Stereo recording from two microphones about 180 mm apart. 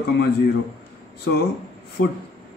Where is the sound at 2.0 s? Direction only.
45° left (ahead or behind).